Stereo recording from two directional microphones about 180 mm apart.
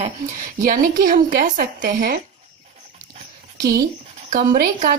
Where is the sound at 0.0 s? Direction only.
45° right (ahead or behind).